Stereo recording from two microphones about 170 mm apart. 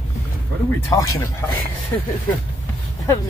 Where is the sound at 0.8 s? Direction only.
20° left (ahead or behind).